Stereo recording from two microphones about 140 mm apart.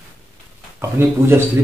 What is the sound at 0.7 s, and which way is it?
Speech, 15° right (ahead or behind).